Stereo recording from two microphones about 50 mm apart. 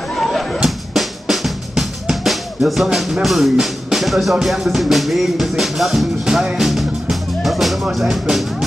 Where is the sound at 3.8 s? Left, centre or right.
Centre.